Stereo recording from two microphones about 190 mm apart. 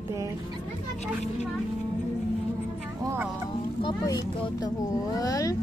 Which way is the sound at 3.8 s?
20° left (ahead or behind).